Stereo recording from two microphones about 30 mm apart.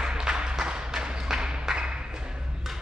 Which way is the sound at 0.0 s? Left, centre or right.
Right.